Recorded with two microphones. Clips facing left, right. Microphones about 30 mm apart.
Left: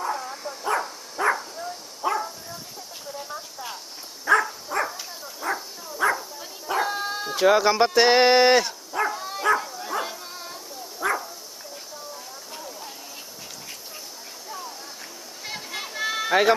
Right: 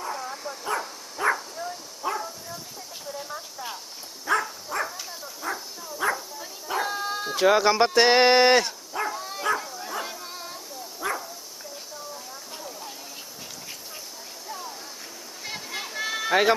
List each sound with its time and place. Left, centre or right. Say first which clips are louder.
0.0 s dog: left 3 dB; centre
0.7 s dog: left 4 dB; centre
1.2 s bow-wow: left 1 dB; centre
2.0 s bow-wow: left 4 dB; centre
3.3 s a sound: even; centre
4.6 s dog: left 3 dB; centre
5.9 s bow-wow: left 3 dB; centre
7.1 s speech: left 1 dB; centre
9.1 s dog: left 4 dB; centre
11.0 s bow-wow: left 4 dB; left
12.5 s a sound: left 1 dB; centre
15.4 s a sound: left 1 dB; centre